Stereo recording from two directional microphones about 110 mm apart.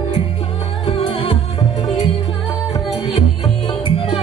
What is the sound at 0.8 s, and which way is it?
Music, 55° left (ahead or behind).